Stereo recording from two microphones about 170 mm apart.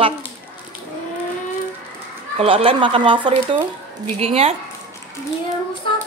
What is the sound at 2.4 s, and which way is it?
Speech, 35° right (ahead or behind).